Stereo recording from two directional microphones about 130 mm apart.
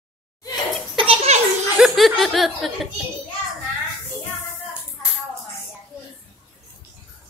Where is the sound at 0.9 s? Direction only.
45° right (ahead or behind).